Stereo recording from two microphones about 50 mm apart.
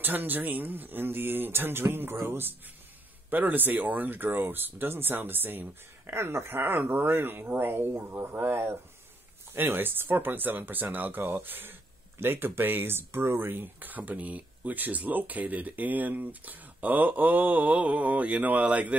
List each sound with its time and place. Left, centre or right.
0.0 s speech: right
3.3 s speech: right